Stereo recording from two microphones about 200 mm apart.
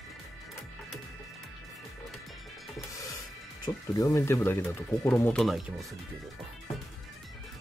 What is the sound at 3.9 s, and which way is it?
Speech, 15° left (ahead or behind).